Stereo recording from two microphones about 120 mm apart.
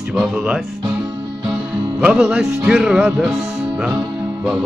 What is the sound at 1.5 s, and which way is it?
Music, 5° right (ahead or behind).